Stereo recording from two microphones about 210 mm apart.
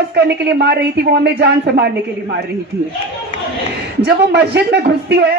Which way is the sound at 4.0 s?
55° right (ahead or behind).